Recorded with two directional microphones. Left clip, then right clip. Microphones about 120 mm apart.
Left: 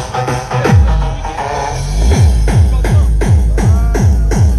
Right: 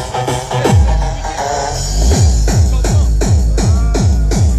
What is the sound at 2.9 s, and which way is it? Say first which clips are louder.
Music: even; 5° left (ahead or behind).